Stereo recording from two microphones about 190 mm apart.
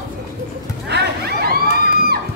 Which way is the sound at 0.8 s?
60° right (ahead or behind).